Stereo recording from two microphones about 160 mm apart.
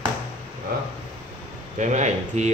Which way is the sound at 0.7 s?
70° right (ahead or behind).